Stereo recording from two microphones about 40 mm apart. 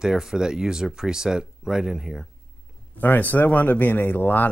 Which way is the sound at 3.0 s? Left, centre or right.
Left.